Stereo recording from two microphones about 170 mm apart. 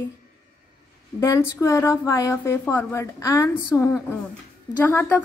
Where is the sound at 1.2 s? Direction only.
15° left (ahead or behind).